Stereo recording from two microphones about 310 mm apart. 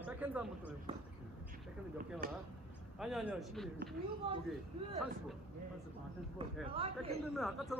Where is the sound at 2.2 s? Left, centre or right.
Right.